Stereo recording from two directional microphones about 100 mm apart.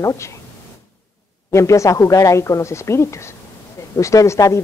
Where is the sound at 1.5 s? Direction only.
30° left (ahead or behind).